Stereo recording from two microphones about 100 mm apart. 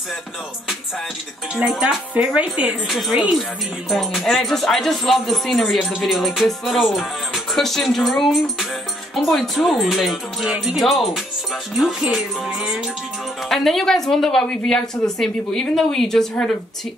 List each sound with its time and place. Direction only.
1.5 s speech: 5° right (ahead or behind)
2.9 s a woman's voice: centre (ahead or behind)